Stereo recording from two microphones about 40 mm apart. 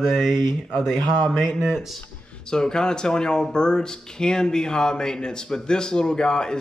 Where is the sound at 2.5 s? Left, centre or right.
Centre.